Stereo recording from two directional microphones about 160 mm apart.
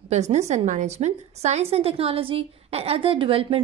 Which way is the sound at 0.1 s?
45° right (ahead or behind).